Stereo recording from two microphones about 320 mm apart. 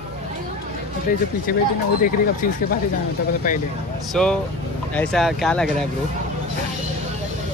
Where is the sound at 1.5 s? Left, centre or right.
Left.